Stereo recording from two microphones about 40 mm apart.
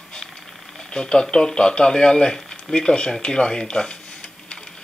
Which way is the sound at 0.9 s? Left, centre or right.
Centre.